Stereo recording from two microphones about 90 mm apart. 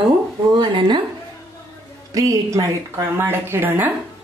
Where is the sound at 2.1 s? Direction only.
40° right (ahead or behind).